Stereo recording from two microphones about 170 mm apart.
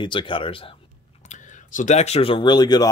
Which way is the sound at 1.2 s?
45° left (ahead or behind).